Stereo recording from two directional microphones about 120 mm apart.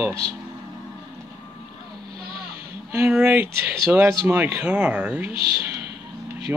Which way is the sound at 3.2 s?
15° right (ahead or behind).